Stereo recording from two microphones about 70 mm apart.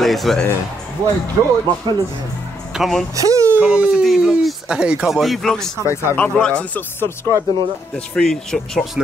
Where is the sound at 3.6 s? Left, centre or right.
Centre.